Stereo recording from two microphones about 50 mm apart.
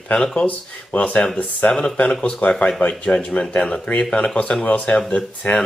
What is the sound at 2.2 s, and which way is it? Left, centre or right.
Speech, left.